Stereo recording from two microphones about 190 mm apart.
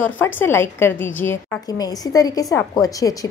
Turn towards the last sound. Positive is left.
turn(degrees=20)  # may be behind; listen again after turning